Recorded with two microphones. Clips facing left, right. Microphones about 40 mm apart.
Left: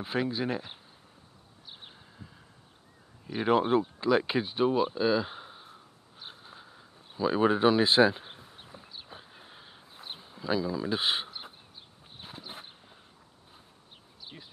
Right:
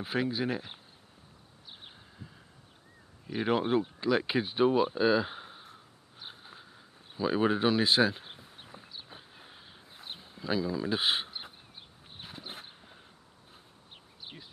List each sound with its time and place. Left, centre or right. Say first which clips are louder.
0.0 s speech: left 1 dB; centre
3.3 s speech: left 3 dB; centre
6.1 s a sound: even; centre
14.2 s bird: even; right